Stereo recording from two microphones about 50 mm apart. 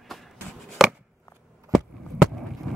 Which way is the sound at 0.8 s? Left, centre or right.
Centre.